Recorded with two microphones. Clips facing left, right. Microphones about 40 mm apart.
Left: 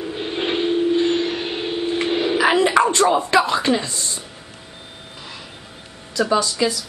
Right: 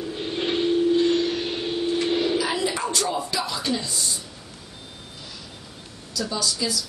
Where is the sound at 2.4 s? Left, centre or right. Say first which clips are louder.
Left 10 dB; left.